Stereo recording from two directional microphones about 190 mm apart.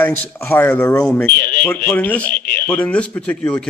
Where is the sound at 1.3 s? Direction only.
50° left (ahead or behind).